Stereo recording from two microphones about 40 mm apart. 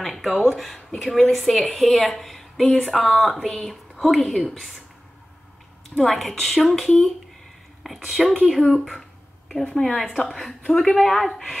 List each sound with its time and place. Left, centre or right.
0.0 s a woman's voice: centre
5.9 s a woman's voice: centre
9.7 s a woman's voice: centre